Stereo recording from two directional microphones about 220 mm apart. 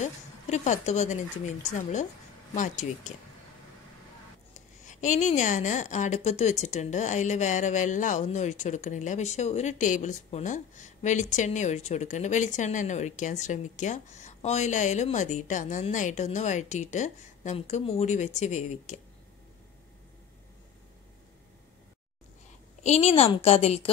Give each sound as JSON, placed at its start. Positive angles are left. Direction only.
{"t": 0.0, "sound": "speech", "side_deg": 30}
{"t": 4.6, "sound": "speech", "side_deg": 35}
{"t": 22.8, "sound": "a woman's voice", "side_deg": 25}